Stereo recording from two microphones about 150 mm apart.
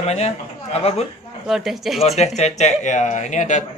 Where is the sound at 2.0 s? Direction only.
45° left (ahead or behind).